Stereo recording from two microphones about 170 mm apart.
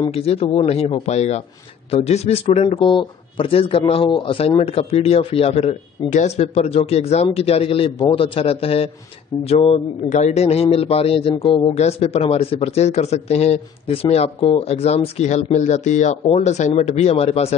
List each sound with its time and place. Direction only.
0.0 s speech: 35° left (ahead or behind)